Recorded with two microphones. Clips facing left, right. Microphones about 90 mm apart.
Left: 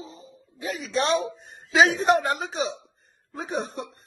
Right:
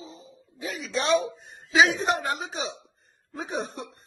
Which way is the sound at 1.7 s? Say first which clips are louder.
Left 1 dB; 55° left (ahead or behind).